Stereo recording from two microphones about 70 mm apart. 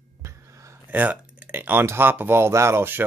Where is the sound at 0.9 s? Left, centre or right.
Right.